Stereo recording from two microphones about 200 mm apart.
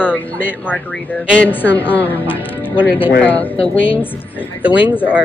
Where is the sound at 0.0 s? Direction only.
10° left (ahead or behind).